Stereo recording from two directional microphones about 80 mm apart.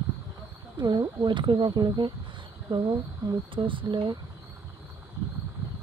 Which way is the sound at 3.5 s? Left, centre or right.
Right.